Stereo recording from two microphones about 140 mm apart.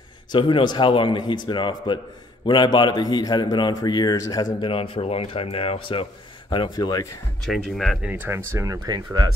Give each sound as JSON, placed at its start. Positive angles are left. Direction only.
{"t": 0.3, "sound": "a man's voice", "side_deg": 35}
{"t": 4.6, "sound": "a man's voice", "side_deg": 40}
{"t": 7.4, "sound": "speech", "side_deg": 0}
{"t": 8.1, "sound": "speech", "side_deg": -15}